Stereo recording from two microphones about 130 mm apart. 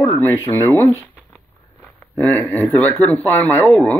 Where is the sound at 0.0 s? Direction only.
15° left (ahead or behind).